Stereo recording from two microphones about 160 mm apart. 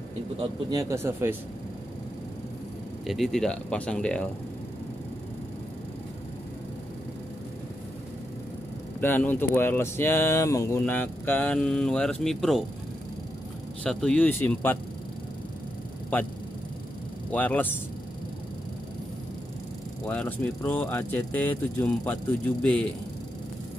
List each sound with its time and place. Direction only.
0.4 s speech: 25° right (ahead or behind)
3.1 s speech: centre (ahead or behind)
9.0 s speech: 10° left (ahead or behind)
13.8 s speech: 5° left (ahead or behind)
16.1 s speech: 10° left (ahead or behind)
17.3 s speech: 10° left (ahead or behind)
20.1 s speech: 10° left (ahead or behind)